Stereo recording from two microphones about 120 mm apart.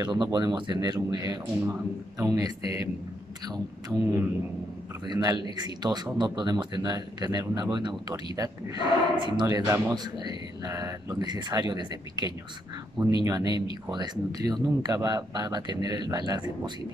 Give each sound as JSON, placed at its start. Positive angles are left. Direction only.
{"t": 0.0, "sound": "speech", "side_deg": -35}
{"t": 5.0, "sound": "speech", "side_deg": -35}
{"t": 9.6, "sound": "a man's voice", "side_deg": -25}
{"t": 10.1, "sound": "speech", "side_deg": -35}